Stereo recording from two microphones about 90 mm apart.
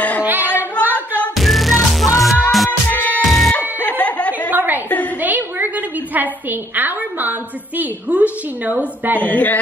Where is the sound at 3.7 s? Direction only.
20° left (ahead or behind).